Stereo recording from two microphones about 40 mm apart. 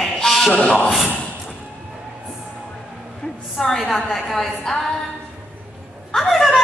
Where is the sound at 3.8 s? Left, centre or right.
Centre.